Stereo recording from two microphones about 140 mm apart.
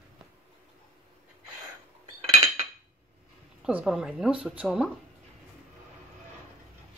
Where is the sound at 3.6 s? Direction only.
5° right (ahead or behind).